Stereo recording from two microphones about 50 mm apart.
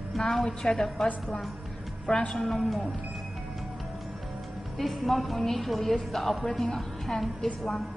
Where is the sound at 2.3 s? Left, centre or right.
Centre.